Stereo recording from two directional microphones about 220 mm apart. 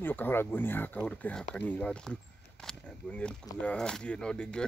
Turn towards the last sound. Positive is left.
turn(degrees=5)  # may be behind; listen again after turning